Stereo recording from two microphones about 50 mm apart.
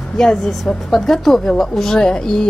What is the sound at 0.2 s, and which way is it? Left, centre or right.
A woman's voice, centre.